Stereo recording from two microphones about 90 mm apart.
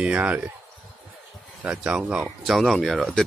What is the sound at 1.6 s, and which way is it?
Speech, 15° right (ahead or behind).